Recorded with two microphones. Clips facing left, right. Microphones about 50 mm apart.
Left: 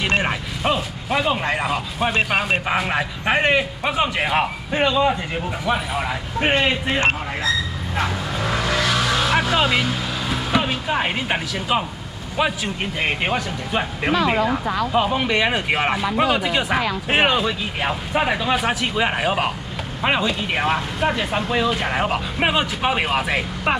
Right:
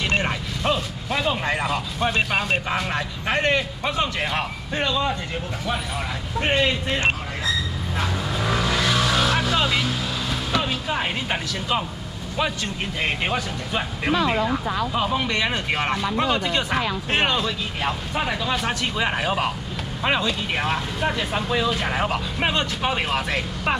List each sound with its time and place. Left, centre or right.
0.2 s speech: centre
2.1 s speech: left
9.3 s vehicle: centre
12.4 s speech: centre